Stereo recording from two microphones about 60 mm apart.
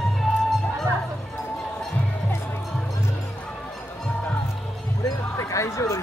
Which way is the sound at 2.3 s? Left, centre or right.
Left.